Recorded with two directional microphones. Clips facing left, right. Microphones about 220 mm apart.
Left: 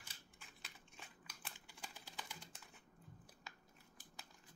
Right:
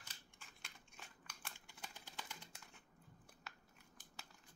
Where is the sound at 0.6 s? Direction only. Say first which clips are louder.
Left 1 dB; centre (ahead or behind).